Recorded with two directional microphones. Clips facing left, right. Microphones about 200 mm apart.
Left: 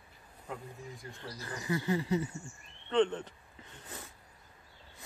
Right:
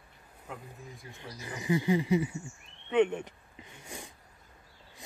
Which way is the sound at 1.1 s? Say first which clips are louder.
Right 3 dB; 15° right (ahead or behind).